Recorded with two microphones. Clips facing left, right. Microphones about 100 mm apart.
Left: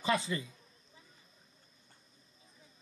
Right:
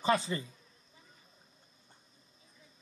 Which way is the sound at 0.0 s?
30° right (ahead or behind).